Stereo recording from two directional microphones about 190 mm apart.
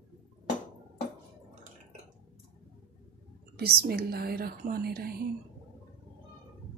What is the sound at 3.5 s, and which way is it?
A woman's voice, 55° right (ahead or behind).